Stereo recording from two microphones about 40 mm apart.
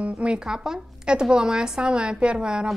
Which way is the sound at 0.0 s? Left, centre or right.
Right.